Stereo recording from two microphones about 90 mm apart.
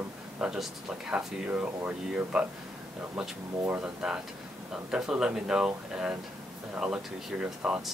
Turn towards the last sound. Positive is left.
turn(degrees=-10)  # may be behind; listen again after turning